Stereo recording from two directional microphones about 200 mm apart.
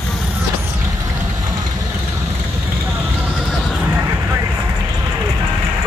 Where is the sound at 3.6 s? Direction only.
5° right (ahead or behind).